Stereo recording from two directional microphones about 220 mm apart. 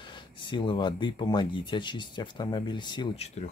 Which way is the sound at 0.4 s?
20° left (ahead or behind).